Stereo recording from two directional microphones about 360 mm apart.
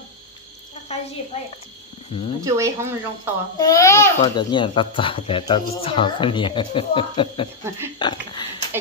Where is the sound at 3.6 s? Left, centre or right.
Centre.